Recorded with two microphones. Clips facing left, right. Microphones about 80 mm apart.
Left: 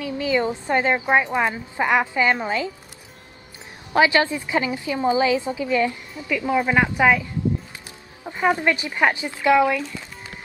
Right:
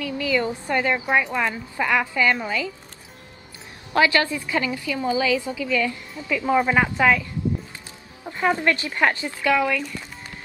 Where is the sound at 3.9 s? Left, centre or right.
Left.